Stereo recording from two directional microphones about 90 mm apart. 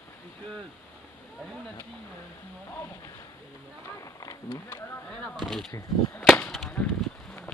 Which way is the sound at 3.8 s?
35° left (ahead or behind).